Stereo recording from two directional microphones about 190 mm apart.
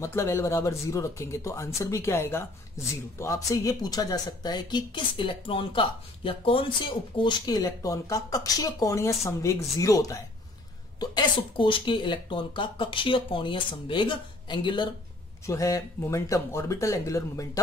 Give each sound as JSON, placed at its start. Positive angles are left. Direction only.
{"t": 0.0, "sound": "speech", "side_deg": 15}